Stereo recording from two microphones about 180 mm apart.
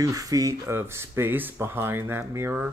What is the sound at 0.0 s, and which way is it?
Speech, 20° right (ahead or behind).